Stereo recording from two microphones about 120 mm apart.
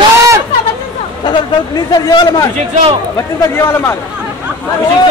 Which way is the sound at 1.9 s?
35° left (ahead or behind).